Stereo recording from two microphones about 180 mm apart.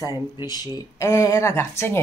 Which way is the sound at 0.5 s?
15° left (ahead or behind).